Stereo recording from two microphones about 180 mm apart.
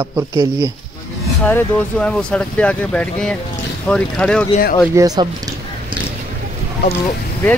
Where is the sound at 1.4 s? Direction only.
10° left (ahead or behind).